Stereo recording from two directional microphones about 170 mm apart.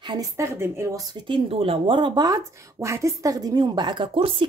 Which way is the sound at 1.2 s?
35° right (ahead or behind).